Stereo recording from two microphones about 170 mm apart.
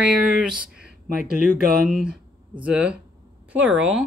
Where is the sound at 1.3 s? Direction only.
60° right (ahead or behind).